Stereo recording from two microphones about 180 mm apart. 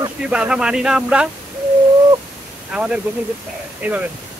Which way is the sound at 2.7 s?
5° right (ahead or behind).